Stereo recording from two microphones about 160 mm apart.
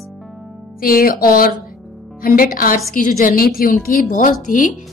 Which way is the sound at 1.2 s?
65° left (ahead or behind).